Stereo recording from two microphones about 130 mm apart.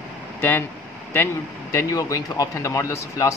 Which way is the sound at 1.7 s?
25° left (ahead or behind).